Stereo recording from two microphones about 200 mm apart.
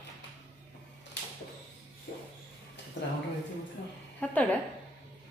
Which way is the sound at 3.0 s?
65° left (ahead or behind).